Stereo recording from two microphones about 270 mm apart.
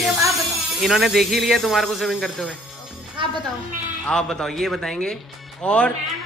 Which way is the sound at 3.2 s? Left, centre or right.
Centre.